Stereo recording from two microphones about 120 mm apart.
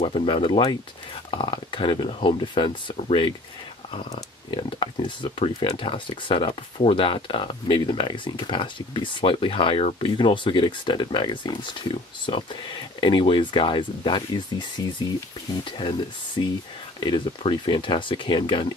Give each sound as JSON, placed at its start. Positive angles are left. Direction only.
{"t": 0.0, "sound": "speech", "side_deg": 45}
{"t": 4.5, "sound": "speech", "side_deg": 45}
{"t": 10.0, "sound": "speech", "side_deg": 40}